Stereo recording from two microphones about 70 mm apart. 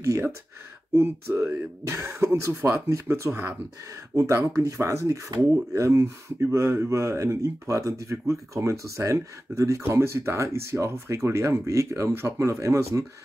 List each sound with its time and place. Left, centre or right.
0.0 s speech: right
1.9 s speech: right